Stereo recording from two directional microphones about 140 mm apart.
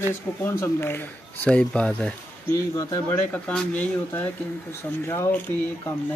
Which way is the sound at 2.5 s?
25° left (ahead or behind).